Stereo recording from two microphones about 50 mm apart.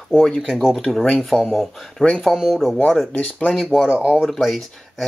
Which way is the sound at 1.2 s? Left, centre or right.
Centre.